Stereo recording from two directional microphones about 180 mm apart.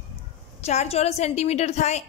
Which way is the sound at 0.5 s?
35° left (ahead or behind).